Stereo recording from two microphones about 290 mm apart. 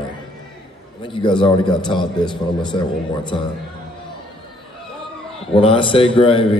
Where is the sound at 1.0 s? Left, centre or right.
Centre.